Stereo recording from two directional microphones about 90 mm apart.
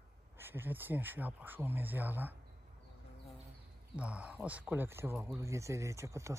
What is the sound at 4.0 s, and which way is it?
Speech, 15° right (ahead or behind).